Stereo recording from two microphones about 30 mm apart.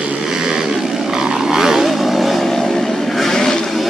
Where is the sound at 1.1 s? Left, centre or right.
Centre.